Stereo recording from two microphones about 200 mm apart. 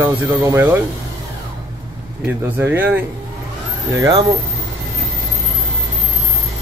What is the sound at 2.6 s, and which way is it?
Speech, 10° right (ahead or behind).